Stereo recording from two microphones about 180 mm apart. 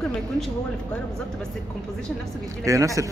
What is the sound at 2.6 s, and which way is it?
Speech, 15° right (ahead or behind).